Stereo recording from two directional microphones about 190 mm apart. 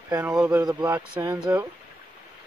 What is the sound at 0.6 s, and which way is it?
Speech, 20° right (ahead or behind).